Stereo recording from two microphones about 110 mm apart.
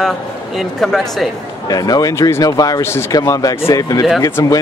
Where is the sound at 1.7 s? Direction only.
35° left (ahead or behind).